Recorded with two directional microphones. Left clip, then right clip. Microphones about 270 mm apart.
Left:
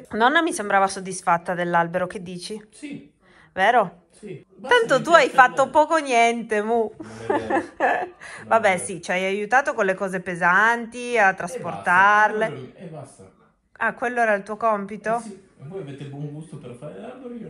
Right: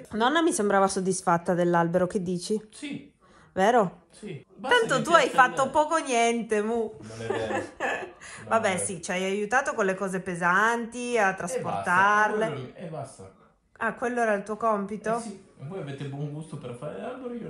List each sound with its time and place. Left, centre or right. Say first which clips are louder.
0.1 s a woman's voice: left 5 dB; centre
2.8 s a man's voice: left 1 dB; centre
3.5 s a woman's voice: left 4 dB; centre
4.2 s a woman's voice: left 1 dB; centre
15.1 s a man's voice: left 5 dB; centre